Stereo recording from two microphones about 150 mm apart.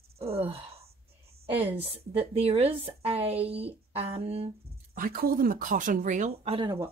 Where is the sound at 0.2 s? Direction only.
40° right (ahead or behind).